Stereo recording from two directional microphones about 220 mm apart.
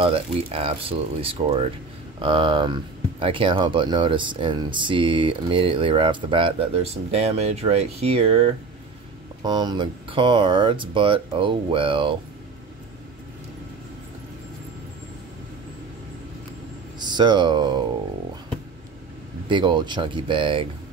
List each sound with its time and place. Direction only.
0.0 s speech: 25° right (ahead or behind)
17.0 s speech: 20° right (ahead or behind)
19.5 s speech: 20° right (ahead or behind)